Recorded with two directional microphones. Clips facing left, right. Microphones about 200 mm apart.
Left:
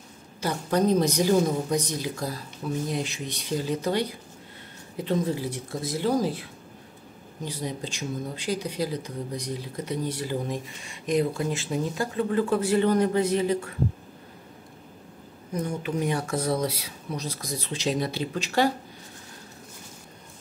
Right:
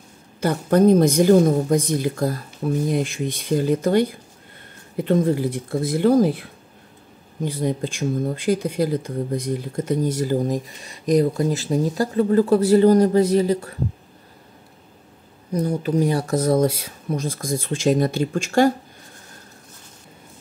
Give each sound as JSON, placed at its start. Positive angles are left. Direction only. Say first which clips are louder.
{"t": 0.4, "sound": "a woman's voice", "louder": "right 8 dB", "side_deg": -55}
{"t": 7.4, "sound": "speech", "louder": "right 9 dB", "side_deg": -55}
{"t": 15.5, "sound": "a woman's voice", "louder": "right 7 dB", "side_deg": -35}